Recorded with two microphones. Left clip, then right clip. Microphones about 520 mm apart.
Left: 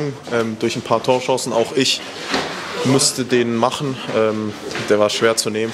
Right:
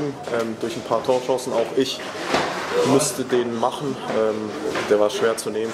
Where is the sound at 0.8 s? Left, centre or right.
Left.